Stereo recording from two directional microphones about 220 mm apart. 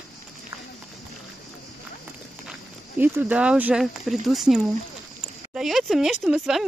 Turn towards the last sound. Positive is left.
turn(degrees=-5)  # may be behind; listen again after turning